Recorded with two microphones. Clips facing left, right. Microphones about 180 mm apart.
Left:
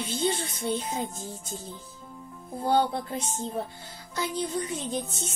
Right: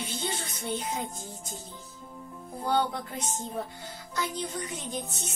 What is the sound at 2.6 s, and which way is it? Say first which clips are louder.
Music: left 3 dB; 25° left (ahead or behind).